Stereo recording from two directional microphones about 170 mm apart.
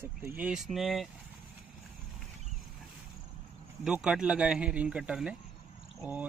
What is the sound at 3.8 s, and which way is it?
Speech, 5° right (ahead or behind).